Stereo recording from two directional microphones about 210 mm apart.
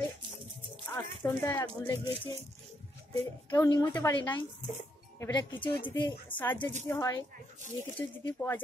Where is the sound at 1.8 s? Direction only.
25° left (ahead or behind).